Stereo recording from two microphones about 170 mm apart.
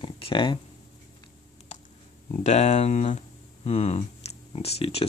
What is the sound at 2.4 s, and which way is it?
Speech, 40° left (ahead or behind).